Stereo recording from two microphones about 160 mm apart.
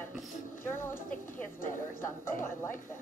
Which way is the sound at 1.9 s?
15° left (ahead or behind).